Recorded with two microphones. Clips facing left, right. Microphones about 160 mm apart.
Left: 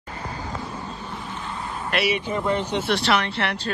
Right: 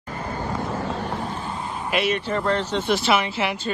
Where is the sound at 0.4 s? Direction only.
70° right (ahead or behind).